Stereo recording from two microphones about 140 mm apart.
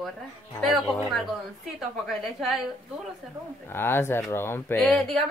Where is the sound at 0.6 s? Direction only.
Centre (ahead or behind).